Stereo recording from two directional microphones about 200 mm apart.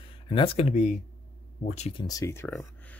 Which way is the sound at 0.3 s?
30° left (ahead or behind).